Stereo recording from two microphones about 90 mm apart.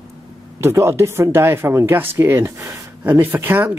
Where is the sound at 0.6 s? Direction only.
30° right (ahead or behind).